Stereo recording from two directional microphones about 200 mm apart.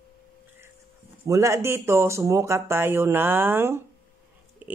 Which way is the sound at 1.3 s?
15° right (ahead or behind).